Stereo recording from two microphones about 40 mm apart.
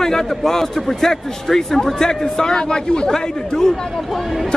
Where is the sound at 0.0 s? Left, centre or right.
Centre.